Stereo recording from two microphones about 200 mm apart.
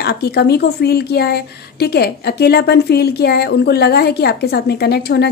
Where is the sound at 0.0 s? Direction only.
55° left (ahead or behind).